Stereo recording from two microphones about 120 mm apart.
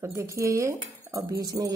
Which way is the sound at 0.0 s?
25° right (ahead or behind).